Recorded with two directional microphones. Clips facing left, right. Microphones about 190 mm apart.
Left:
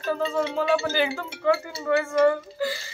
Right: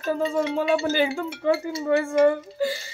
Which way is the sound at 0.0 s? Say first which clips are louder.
Right 2 dB; 15° right (ahead or behind).